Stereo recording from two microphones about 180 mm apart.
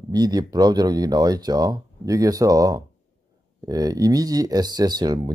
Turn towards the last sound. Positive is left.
turn(degrees=-20)  # may be behind; listen again after turning